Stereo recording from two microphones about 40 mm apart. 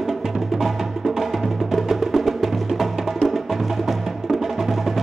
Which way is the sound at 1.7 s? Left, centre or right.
Centre.